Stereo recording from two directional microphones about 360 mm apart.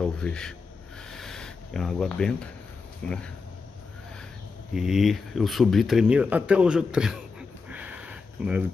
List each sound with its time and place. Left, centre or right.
0.0 s speech: centre
1.1 s a sound: centre
3.0 s speech: centre
4.7 s speech: centre